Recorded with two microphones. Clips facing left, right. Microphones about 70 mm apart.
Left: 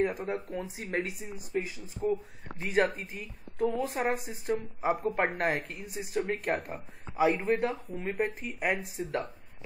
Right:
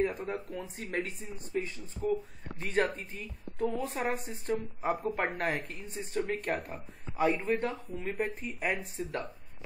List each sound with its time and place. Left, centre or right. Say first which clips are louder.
0.0 s a woman's voice: left 2 dB; centre
2.0 s speech: left 1 dB; left
2.6 s a woman's voice: left 3 dB; centre